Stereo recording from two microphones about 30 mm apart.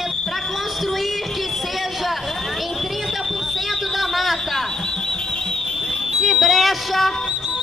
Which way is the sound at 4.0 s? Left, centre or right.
Centre.